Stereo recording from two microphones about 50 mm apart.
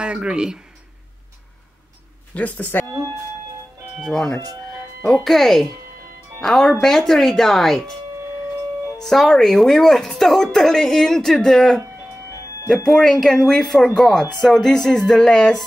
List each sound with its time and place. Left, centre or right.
0.0 s speech: right
2.3 s speech: left
4.0 s a woman's voice: centre
9.0 s a woman's voice: centre